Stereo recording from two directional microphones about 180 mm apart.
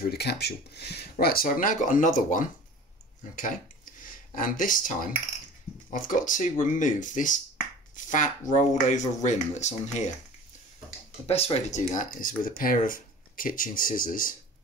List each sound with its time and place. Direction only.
0.0 s speech: 65° left (ahead or behind); by 2.4 s 45° left (ahead or behind)
4.0 s speech: 50° left (ahead or behind)
11.2 s speech: 35° left (ahead or behind); by 14.3 s 50° left (ahead or behind)